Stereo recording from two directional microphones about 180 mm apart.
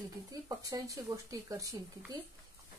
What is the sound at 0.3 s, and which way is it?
Speech, 20° right (ahead or behind).